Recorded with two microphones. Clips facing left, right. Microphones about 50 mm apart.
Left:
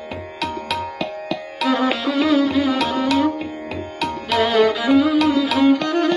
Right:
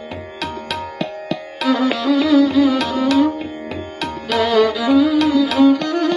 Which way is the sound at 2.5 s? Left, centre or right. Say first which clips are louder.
Right 3 dB; centre.